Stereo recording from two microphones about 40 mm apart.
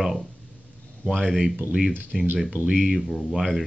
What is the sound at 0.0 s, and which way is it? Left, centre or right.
Speech, centre.